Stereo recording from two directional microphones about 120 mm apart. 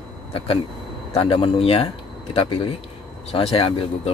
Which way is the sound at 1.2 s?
45° left (ahead or behind).